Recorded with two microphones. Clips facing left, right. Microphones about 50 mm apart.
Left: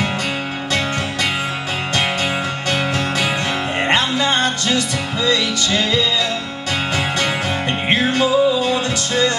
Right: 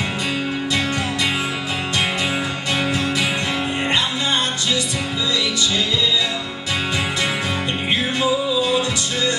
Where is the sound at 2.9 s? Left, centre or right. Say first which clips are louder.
Left 1 dB; left.